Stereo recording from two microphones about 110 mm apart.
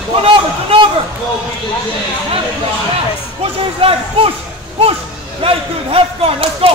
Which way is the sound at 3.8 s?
60° right (ahead or behind).